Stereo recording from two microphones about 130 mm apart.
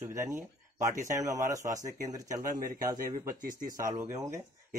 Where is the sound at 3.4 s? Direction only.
90° right.